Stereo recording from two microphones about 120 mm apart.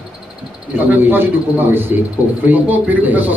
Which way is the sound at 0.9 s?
15° right (ahead or behind).